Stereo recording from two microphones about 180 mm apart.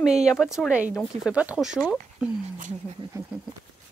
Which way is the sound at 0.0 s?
5° right (ahead or behind).